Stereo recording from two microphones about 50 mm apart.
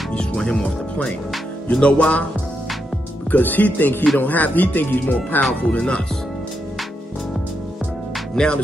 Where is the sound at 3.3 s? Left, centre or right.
Left.